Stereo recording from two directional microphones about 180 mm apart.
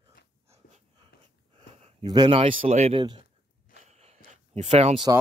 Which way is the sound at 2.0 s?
25° right (ahead or behind).